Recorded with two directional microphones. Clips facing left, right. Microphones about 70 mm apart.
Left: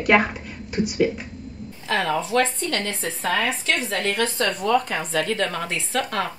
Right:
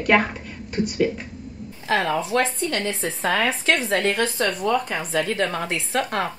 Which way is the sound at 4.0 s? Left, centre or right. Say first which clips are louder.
Right 2 dB; right.